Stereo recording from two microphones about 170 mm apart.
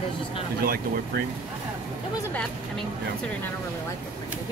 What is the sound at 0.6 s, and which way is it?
Speech, 65° right (ahead or behind).